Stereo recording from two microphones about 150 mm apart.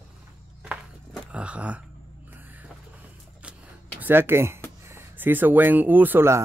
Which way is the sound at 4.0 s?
15° right (ahead or behind).